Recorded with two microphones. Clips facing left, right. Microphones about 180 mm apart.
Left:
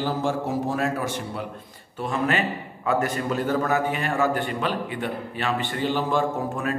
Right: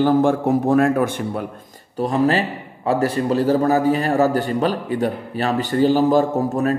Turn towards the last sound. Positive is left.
turn(degrees=-40)  # may be behind; listen again after turning